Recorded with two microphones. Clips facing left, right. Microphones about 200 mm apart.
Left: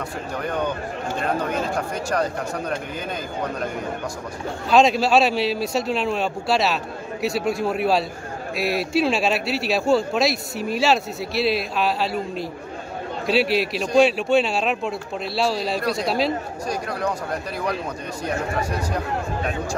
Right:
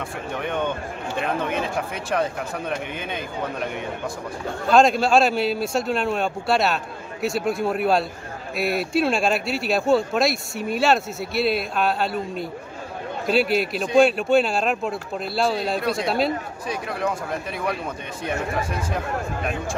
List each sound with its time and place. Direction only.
0.4 s speech: centre (ahead or behind)
4.6 s speech: centre (ahead or behind)